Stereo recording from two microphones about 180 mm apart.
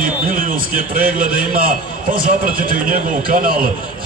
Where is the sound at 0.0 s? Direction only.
50° right (ahead or behind).